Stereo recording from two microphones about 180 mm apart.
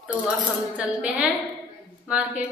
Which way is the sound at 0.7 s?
5° right (ahead or behind).